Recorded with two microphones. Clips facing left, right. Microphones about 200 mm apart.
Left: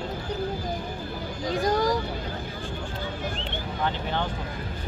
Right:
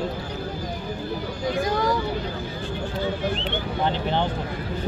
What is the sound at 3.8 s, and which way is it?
Vehicle, 20° right (ahead or behind).